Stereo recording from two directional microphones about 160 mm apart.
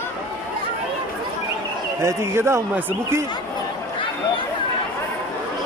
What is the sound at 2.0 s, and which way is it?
Speech, 15° right (ahead or behind).